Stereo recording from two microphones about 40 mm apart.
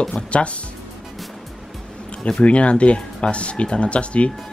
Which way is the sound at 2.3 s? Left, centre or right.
Left.